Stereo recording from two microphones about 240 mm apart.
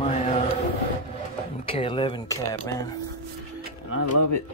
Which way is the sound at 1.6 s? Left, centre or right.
Left.